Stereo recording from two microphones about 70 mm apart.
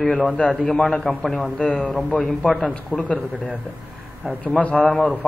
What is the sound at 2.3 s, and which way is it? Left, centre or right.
Speech, centre.